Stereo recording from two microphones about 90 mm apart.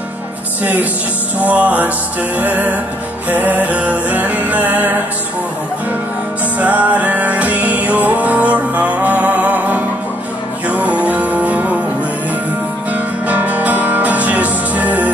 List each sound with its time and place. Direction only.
1.4 s music: 15° right (ahead or behind)
6.6 s music: 15° right (ahead or behind)
12.9 s music: 15° right (ahead or behind)